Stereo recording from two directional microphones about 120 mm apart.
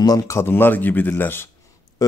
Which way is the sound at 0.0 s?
30° left (ahead or behind).